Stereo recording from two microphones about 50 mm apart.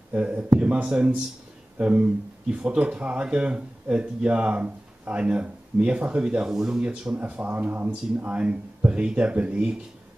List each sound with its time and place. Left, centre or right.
0.1 s speech: right
6.8 s speech: right